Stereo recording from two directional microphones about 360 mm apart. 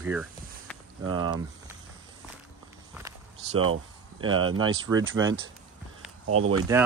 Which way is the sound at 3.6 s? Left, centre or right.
Right.